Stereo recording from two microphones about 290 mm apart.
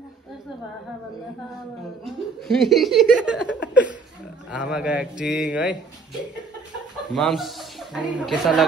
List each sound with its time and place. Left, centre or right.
2.0 s speech: centre
3.4 s a sound: left
4.5 s speech: centre
7.2 s speech: centre